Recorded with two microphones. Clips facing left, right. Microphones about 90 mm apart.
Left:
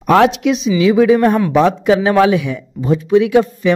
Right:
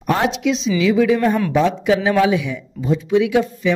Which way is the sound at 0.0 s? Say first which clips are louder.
Left 7 dB; 80° left.